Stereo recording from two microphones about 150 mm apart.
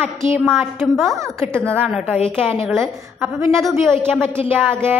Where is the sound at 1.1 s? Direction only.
15° right (ahead or behind).